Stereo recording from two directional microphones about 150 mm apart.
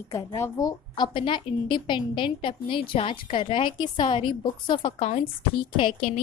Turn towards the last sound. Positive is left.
turn(degrees=35)  # may be behind; listen again after turning